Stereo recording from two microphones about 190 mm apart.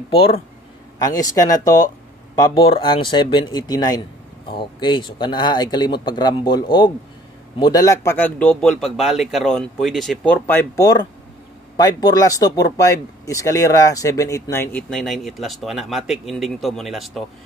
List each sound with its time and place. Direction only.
1.0 s speech: 20° left (ahead or behind)
7.5 s speech: 20° left (ahead or behind); by 17.2 s centre (ahead or behind)